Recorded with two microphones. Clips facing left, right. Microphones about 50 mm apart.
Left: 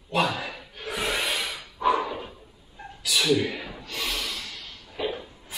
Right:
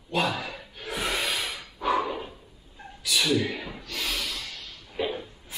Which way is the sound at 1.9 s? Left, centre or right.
Centre.